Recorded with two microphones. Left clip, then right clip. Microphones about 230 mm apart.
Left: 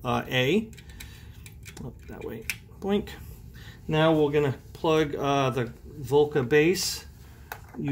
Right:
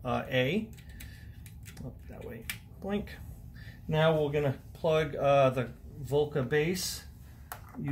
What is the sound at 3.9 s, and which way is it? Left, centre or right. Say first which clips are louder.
Speech: left 5 dB; left.